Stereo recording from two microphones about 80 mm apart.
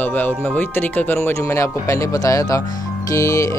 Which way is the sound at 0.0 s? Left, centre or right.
Left.